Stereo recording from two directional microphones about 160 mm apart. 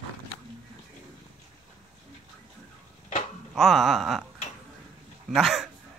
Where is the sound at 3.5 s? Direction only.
Centre (ahead or behind).